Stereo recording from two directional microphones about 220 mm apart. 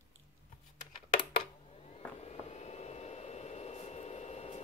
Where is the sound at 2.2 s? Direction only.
30° left (ahead or behind).